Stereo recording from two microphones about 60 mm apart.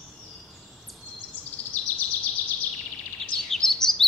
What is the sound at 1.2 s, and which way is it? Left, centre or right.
Bird vocalization, left.